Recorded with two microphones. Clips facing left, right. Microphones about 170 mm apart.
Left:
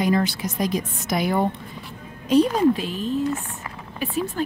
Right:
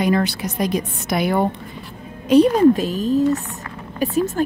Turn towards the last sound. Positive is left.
turn(degrees=-40)  # may be behind; listen again after turning